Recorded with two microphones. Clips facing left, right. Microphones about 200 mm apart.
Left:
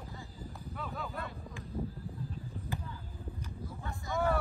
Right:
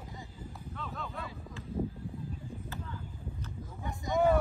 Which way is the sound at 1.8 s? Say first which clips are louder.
Right 4 dB; 30° right (ahead or behind).